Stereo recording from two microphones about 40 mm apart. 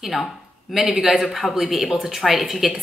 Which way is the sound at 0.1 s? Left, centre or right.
Centre.